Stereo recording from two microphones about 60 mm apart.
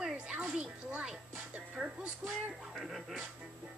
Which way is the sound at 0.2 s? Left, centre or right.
Centre.